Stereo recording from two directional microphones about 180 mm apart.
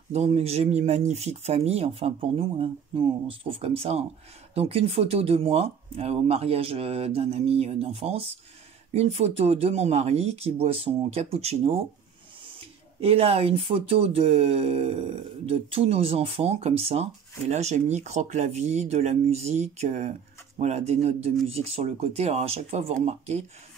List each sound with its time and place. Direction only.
0.1 s speech: 35° right (ahead or behind)